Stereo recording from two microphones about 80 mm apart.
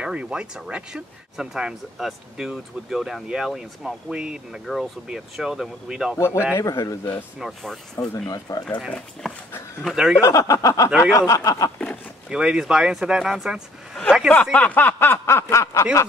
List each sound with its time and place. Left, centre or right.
0.0 s speech: centre
6.1 s speech: left
7.3 s speech: centre
8.3 s snicker: left
9.2 s speech: centre
9.9 s speech: centre
10.2 s snicker: left
12.3 s speech: centre
14.3 s speech: centre; by 16.1 s left